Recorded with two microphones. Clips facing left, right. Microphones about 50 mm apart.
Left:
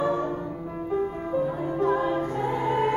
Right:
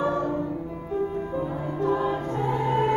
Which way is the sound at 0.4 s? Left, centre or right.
Centre.